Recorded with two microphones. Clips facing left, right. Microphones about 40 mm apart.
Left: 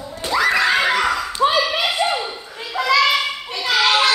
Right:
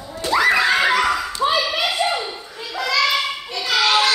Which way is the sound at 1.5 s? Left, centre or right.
Centre.